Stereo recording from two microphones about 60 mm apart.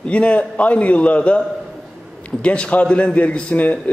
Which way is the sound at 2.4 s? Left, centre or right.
Centre.